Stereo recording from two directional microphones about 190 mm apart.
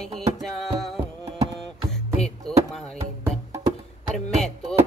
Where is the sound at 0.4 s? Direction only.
Centre (ahead or behind).